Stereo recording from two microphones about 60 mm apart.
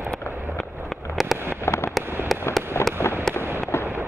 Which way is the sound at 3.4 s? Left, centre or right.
Right.